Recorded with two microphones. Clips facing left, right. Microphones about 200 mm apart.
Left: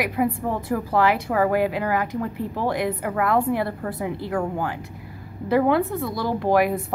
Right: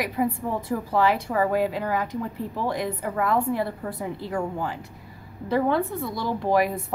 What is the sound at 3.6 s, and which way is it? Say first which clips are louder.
Speech: left 2 dB; 5° left (ahead or behind).